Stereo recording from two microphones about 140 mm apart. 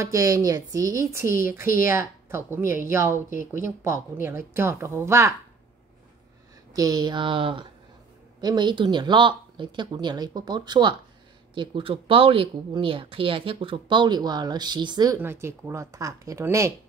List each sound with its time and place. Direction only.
0.0 s a woman's voice: 25° right (ahead or behind)
6.7 s speech: 25° right (ahead or behind)
15.1 s speech: 15° right (ahead or behind)